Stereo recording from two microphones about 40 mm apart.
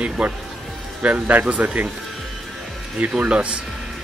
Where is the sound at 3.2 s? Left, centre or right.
Right.